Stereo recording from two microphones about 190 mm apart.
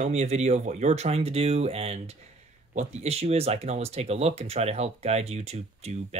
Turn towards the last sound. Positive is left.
turn(degrees=-35)  # may be behind; listen again after turning